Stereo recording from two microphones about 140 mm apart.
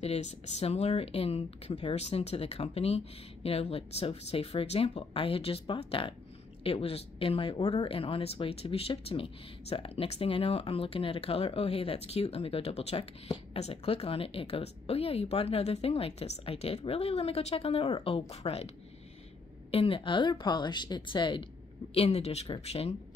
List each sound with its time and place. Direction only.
0.0 s speech: 50° left (ahead or behind)
19.7 s speech: 40° left (ahead or behind)
21.9 s speech: 45° left (ahead or behind)